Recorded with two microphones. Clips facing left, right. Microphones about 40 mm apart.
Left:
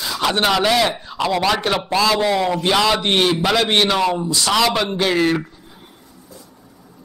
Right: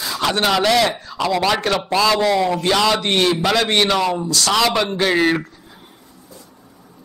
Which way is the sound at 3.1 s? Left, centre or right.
Centre.